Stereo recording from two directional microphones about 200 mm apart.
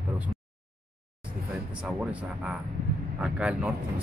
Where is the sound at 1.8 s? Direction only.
5° right (ahead or behind).